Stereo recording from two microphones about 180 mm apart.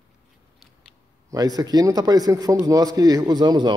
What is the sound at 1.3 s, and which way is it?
A man's voice, 20° right (ahead or behind).